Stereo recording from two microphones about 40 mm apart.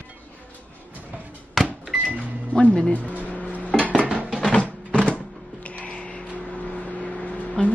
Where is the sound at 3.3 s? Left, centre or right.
Left.